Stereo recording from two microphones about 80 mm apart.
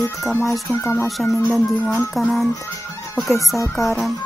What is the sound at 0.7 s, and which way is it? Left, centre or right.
Speech, left.